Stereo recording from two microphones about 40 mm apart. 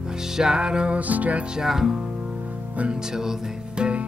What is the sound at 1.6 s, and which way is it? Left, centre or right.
Music, centre.